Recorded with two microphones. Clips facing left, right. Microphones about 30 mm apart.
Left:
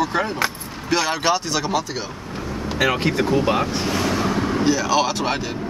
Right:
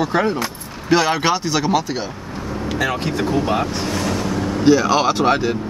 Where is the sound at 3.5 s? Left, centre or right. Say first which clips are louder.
Even; centre.